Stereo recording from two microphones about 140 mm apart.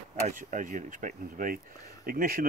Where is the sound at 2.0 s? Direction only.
90° right.